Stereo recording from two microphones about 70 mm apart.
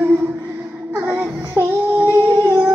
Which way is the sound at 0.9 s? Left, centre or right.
Right.